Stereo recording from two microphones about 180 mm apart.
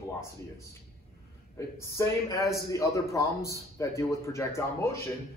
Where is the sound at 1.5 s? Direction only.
15° left (ahead or behind).